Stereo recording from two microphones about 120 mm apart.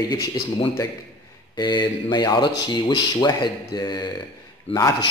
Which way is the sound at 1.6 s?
40° left (ahead or behind).